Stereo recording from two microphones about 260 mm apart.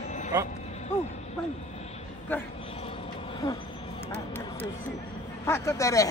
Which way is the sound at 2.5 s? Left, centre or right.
Left.